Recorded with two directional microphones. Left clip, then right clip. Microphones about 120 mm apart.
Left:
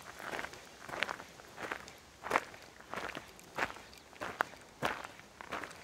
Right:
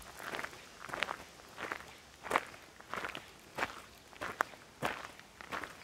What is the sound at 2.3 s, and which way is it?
Walk, centre (ahead or behind).